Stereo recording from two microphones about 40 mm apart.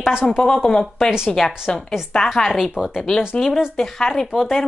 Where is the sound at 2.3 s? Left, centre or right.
Centre.